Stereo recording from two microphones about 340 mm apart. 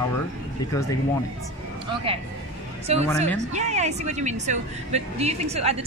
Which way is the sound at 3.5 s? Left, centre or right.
Centre.